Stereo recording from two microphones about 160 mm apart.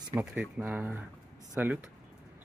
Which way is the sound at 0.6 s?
15° right (ahead or behind).